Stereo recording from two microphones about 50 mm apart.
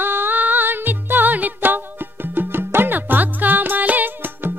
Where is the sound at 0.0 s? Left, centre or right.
Right.